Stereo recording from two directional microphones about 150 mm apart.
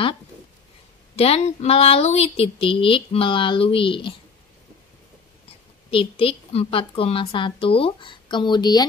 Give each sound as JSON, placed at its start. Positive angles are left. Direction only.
{"t": 1.1, "sound": "speech", "side_deg": 40}
{"t": 5.9, "sound": "speech", "side_deg": 40}